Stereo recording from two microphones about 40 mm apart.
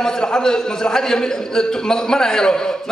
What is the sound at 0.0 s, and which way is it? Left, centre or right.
A man's voice, centre.